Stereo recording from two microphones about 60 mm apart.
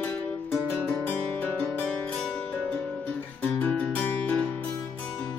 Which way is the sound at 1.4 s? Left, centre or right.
Left.